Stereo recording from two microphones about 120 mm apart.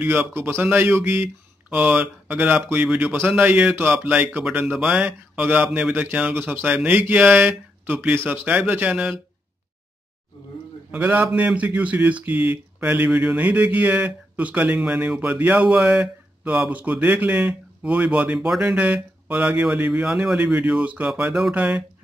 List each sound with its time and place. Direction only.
0.0 s a man's voice: 15° right (ahead or behind)
10.9 s a man's voice: 15° right (ahead or behind)